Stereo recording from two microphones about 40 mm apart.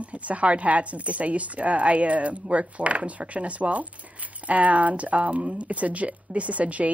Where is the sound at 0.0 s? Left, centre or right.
Right.